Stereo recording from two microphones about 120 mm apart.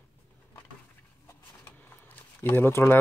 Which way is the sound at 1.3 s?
20° left (ahead or behind).